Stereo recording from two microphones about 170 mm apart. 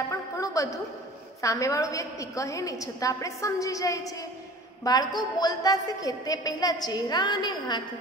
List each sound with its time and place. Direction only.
0.1 s music: 20° left (ahead or behind)
1.4 s a woman's voice: 20° left (ahead or behind)